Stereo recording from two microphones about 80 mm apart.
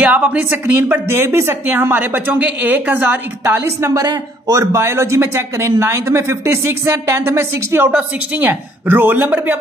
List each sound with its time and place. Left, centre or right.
0.0 s a woman's voice: centre
3.6 s speech: right
4.0 s a woman's voice: right